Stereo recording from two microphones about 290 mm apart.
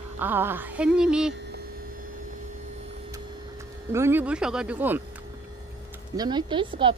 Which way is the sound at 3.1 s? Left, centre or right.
Centre.